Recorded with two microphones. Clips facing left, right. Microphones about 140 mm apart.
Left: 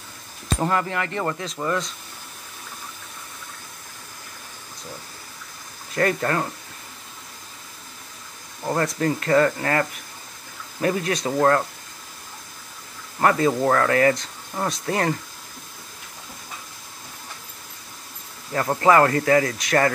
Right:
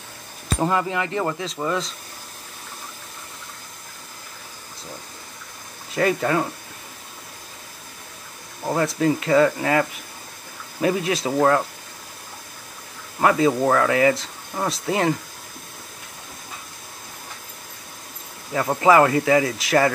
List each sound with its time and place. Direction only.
0.6 s speech: 15° right (ahead or behind)
1.4 s speech: centre (ahead or behind)
5.9 s speech: 10° right (ahead or behind)
8.6 s speech: 5° right (ahead or behind)
13.2 s speech: 10° right (ahead or behind)
18.5 s speech: 10° right (ahead or behind)